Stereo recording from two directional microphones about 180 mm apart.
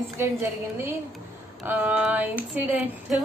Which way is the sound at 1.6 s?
5° right (ahead or behind).